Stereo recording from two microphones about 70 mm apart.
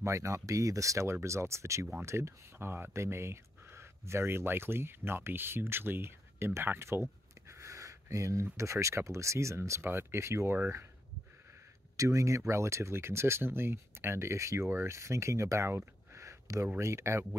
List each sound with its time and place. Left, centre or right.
0.0 s speech: right
12.0 s speech: right